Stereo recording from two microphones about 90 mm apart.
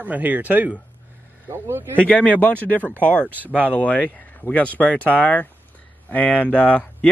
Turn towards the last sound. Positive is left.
turn(degrees=10)  # may be behind; listen again after turning